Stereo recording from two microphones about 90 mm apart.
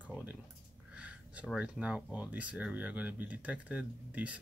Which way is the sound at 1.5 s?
10° right (ahead or behind).